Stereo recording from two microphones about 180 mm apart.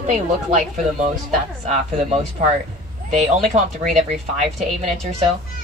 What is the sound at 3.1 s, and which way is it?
Speech, 40° right (ahead or behind).